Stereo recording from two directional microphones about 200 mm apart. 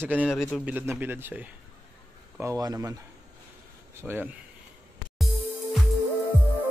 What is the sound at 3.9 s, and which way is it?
Speech, 10° right (ahead or behind).